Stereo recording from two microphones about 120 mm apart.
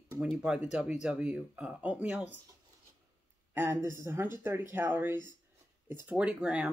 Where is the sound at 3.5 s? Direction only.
20° right (ahead or behind).